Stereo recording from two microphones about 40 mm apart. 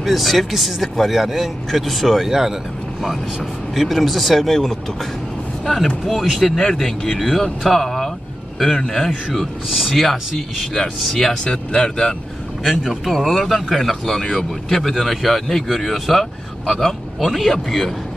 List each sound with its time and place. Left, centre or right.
0.0 s speech: centre
2.2 s speech: centre
3.7 s speech: centre
6.0 s speech: centre
6.4 s speech: centre
9.7 s speech: centre
10.6 s speech: centre
11.4 s speech: left
12.6 s speech: centre
13.1 s speech: centre